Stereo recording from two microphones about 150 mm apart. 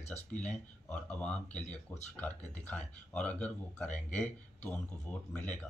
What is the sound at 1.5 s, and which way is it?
Speech, 50° left (ahead or behind).